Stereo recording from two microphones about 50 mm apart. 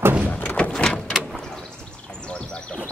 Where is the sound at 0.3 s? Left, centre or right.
Left.